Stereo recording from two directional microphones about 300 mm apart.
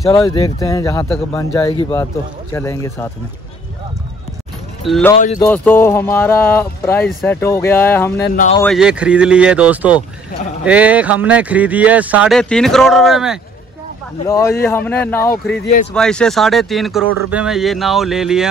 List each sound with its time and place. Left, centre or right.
0.1 s speech: centre
4.8 s speech: centre
5.1 s speech: left
5.4 s speech: centre
8.2 s speech: left
8.5 s speech: centre
14.2 s speech: centre